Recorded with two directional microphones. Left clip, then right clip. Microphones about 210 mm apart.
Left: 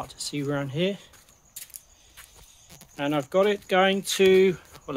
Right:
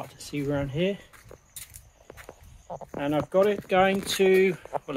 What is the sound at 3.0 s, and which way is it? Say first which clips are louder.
Speech: even; 15° left (ahead or behind).